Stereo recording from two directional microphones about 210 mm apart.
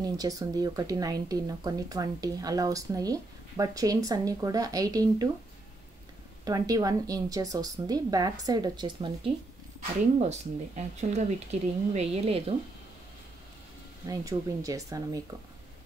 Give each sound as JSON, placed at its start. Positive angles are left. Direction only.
{"t": 0.0, "sound": "speech", "side_deg": -15}
{"t": 6.4, "sound": "a woman's voice", "side_deg": -15}
{"t": 14.0, "sound": "speech", "side_deg": -15}